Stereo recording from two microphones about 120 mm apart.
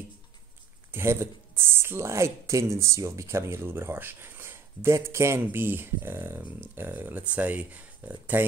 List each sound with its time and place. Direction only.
0.9 s speech: 20° right (ahead or behind)